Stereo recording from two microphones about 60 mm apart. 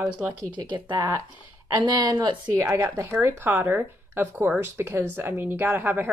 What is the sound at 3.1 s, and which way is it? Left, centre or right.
Speech, right.